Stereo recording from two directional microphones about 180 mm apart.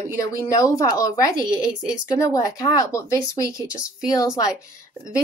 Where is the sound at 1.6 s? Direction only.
5° right (ahead or behind).